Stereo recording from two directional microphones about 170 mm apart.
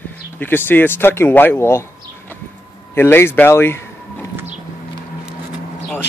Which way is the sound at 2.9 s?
15° left (ahead or behind).